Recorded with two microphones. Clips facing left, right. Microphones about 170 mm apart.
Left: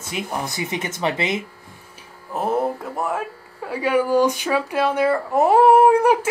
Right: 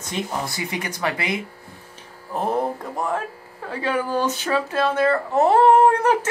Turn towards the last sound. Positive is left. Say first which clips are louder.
# left 2 dB
turn(degrees=10)  # may be behind; listen again after turning